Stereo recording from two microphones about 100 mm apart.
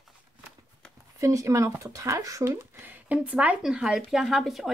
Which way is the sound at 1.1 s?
30° right (ahead or behind).